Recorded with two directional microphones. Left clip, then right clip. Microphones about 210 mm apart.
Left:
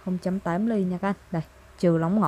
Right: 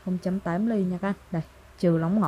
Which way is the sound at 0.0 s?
10° left (ahead or behind).